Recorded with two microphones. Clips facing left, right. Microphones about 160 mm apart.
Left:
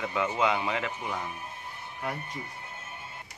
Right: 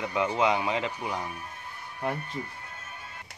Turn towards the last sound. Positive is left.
turn(degrees=25)  # may be behind; listen again after turning